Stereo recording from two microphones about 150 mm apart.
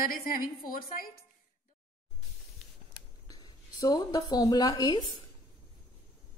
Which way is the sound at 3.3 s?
25° left (ahead or behind).